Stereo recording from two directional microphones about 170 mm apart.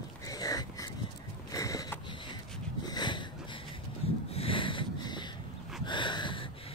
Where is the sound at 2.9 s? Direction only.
25° left (ahead or behind).